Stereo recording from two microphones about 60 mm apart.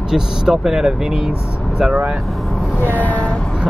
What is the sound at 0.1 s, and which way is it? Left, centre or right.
Speech, centre.